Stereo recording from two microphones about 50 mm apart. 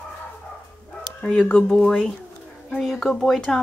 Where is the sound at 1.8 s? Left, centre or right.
Centre.